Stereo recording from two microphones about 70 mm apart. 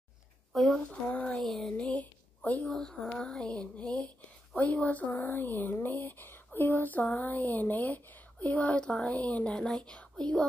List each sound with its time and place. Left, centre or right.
0.5 s a woman's voice: centre
0.8 s speech: left
1.3 s a sound: centre
1.8 s a woman's voice: centre
2.6 s speech: centre
3.2 s a sound: centre
4.6 s speech: left
9.7 s a sound: centre
9.9 s speech: centre